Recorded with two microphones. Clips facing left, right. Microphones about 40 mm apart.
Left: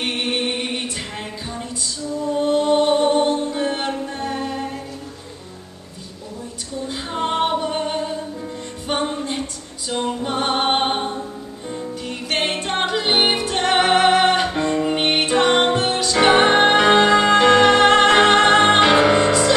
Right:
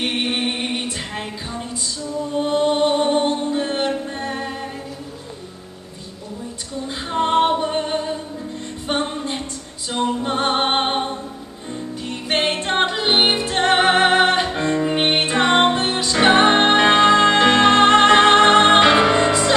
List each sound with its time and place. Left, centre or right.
0.0 s a capella: centre
2.4 s music: centre
6.9 s female singing: centre
8.8 s music: centre
12.0 s music: centre